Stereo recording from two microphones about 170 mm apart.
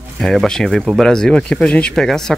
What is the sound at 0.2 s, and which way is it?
Speech, centre (ahead or behind).